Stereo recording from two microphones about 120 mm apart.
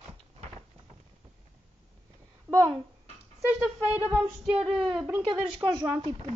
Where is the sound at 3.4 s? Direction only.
10° right (ahead or behind).